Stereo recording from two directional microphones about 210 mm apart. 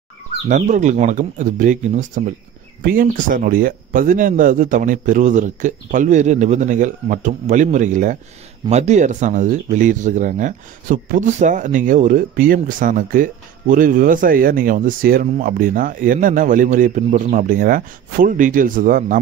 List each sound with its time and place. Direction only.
0.5 s speech: 35° right (ahead or behind)